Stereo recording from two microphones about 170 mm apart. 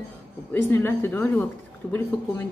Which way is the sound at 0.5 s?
15° left (ahead or behind).